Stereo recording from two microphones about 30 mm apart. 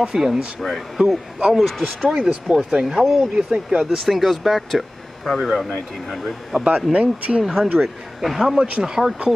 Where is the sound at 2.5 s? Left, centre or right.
Right.